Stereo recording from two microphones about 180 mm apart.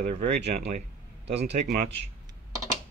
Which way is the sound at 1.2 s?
70° right (ahead or behind).